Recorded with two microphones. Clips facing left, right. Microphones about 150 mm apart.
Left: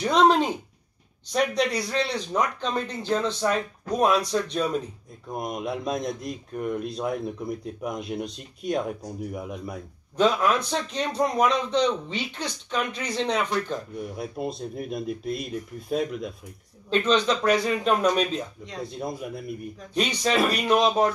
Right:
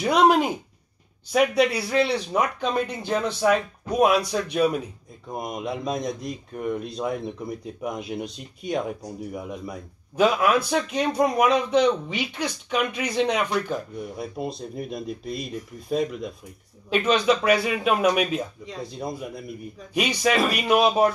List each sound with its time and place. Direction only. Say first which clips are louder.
0.0 s a man's voice: right 1 dB; 10° right (ahead or behind)
14.1 s speech: even; centre (ahead or behind)
16.9 s a man's voice: right 2 dB; 10° right (ahead or behind)
18.8 s speech: even; centre (ahead or behind)
19.9 s a man's voice: right 2 dB; 10° right (ahead or behind)